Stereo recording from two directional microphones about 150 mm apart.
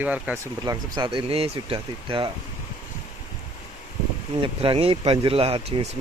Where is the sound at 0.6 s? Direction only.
30° right (ahead or behind).